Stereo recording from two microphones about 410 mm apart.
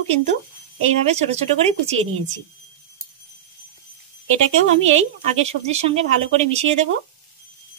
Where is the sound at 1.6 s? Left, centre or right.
Centre.